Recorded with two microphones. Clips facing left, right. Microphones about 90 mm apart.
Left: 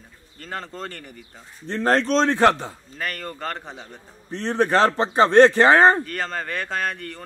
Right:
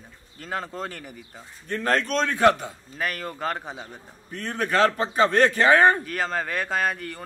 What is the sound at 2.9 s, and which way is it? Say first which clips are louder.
Speech: right 2 dB; 5° right (ahead or behind).